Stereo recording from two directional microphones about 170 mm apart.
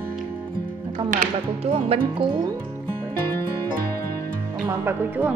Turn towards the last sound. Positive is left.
turn(degrees=-10)  # may be behind; listen again after turning